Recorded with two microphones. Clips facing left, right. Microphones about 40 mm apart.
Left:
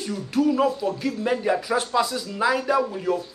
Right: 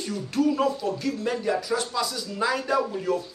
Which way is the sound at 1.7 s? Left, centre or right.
Left.